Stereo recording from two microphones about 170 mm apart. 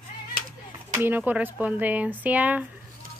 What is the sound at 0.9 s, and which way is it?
Speech, 10° right (ahead or behind).